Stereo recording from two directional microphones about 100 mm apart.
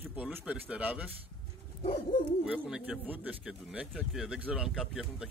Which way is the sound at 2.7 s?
10° right (ahead or behind).